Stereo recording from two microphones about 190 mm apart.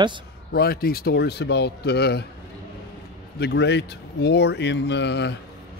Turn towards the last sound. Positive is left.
turn(degrees=65)  # may be behind; listen again after turning